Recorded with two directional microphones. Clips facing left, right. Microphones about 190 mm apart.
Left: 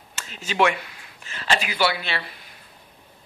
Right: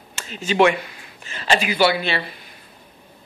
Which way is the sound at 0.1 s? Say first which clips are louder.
Right 8 dB; 5° left (ahead or behind).